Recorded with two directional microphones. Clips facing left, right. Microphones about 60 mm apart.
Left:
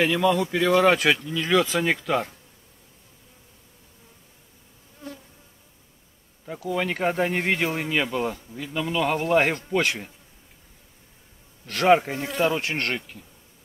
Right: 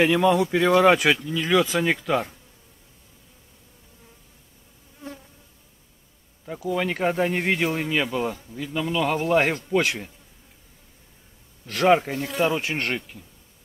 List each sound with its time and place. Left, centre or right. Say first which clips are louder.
0.0 s speech: right 2 dB; centre
6.4 s speech: right 1 dB; centre
11.6 s speech: even; centre